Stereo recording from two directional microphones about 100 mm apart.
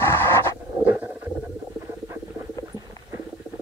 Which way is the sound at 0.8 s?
20° right (ahead or behind).